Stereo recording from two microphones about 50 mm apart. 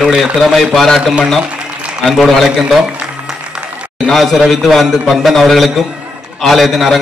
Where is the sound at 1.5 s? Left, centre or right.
Right.